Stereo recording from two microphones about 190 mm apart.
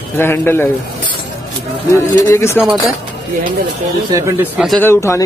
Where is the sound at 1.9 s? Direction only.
15° left (ahead or behind).